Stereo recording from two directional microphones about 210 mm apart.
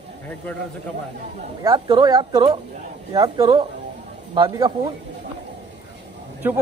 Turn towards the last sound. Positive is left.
turn(degrees=-10)  # may be behind; listen again after turning